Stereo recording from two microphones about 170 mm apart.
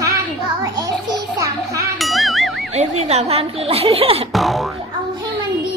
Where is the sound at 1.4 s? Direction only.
20° right (ahead or behind).